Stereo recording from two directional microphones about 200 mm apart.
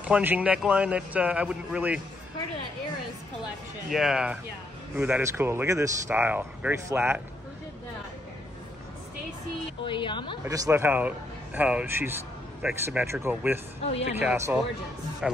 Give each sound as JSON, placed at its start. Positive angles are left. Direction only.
{"t": 0.0, "sound": "speech", "side_deg": -10}
{"t": 3.9, "sound": "speech", "side_deg": 0}
{"t": 9.8, "sound": "a woman's voice", "side_deg": 25}
{"t": 10.4, "sound": "speech", "side_deg": -15}